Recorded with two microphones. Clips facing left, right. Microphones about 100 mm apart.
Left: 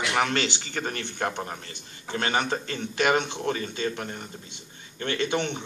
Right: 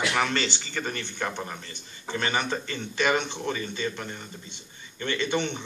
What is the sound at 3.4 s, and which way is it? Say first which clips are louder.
Speech: left 2 dB; 45° left (ahead or behind).